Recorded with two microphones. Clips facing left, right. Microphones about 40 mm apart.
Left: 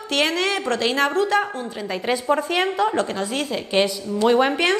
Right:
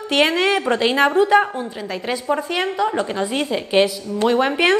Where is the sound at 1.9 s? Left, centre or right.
Centre.